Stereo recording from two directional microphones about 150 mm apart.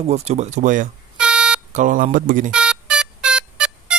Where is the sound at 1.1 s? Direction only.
5° right (ahead or behind).